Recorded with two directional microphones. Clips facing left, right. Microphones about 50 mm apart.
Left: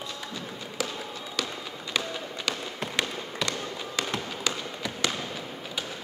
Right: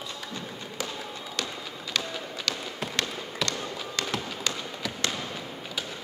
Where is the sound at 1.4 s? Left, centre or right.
Centre.